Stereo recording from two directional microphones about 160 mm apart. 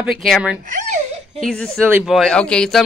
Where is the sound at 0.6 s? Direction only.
50° right (ahead or behind).